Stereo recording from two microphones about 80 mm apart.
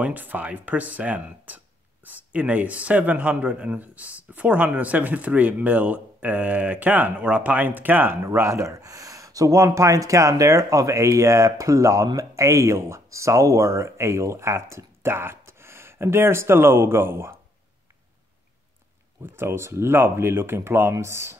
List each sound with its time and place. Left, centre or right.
0.0 s speech: right
19.2 s speech: right